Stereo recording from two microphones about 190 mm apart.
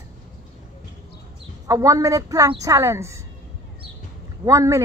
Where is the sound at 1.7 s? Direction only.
15° right (ahead or behind).